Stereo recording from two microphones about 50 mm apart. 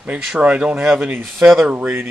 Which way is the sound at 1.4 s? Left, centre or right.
Right.